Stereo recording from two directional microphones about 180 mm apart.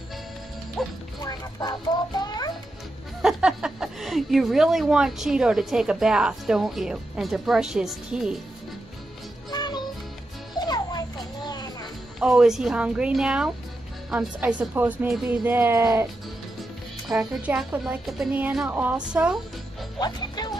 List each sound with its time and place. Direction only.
0.8 s music: centre (ahead or behind)
1.2 s a sound: 20° left (ahead or behind)
3.2 s a woman's voice: 5° right (ahead or behind)
9.5 s music: 25° left (ahead or behind)
10.7 s children playing: 20° left (ahead or behind)
12.2 s a woman's voice: 5° right (ahead or behind)
17.1 s a woman's voice: 5° right (ahead or behind)
20.0 s speech: 25° left (ahead or behind)